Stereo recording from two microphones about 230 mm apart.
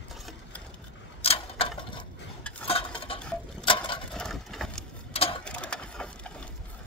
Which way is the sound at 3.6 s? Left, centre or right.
Left.